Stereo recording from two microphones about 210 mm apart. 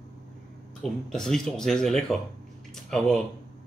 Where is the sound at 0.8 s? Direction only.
Centre (ahead or behind).